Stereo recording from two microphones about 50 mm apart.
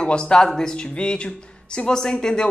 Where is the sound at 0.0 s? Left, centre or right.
Centre.